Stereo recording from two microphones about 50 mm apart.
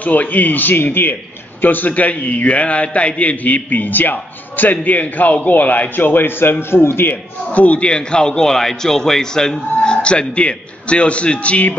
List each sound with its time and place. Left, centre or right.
0.0 s a man's voice: left
6.7 s a man's voice: left
7.1 s a man's voice: left